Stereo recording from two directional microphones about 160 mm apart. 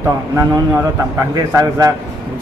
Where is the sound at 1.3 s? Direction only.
25° right (ahead or behind).